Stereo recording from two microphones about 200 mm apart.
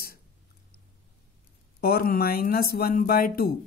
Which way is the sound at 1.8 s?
50° left (ahead or behind).